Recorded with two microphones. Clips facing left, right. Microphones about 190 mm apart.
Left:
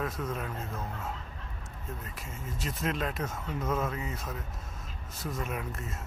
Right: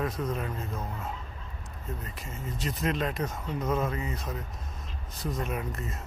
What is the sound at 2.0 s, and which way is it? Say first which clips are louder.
Speech: right 3 dB; 5° left (ahead or behind).